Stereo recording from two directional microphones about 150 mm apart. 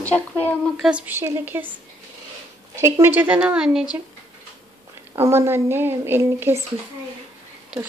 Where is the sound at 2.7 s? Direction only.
20° right (ahead or behind).